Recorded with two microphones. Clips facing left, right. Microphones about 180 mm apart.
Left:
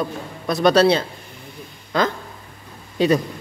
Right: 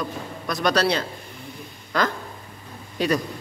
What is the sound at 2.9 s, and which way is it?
Speech, 25° left (ahead or behind).